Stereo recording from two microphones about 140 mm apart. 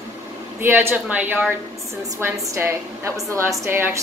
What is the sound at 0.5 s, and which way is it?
Speech, 15° right (ahead or behind).